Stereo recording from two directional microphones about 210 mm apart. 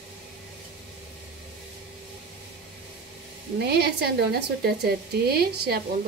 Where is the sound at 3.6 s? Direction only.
50° right (ahead or behind).